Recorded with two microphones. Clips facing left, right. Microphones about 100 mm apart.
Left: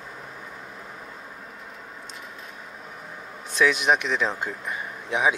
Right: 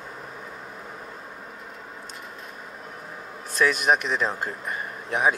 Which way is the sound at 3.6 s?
45° right (ahead or behind).